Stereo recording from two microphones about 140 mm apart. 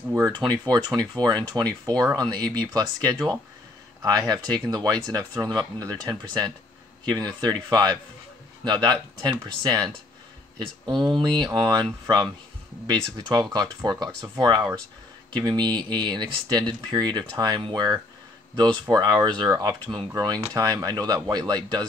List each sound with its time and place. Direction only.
0.1 s speech: 25° right (ahead or behind)
11.1 s speech: 30° right (ahead or behind)